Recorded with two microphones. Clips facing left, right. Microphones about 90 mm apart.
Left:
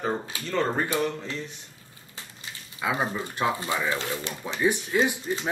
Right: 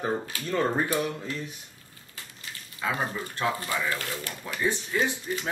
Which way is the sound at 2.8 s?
20° left (ahead or behind).